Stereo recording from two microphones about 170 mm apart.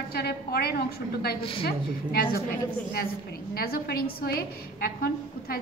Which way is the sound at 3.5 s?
65° left (ahead or behind).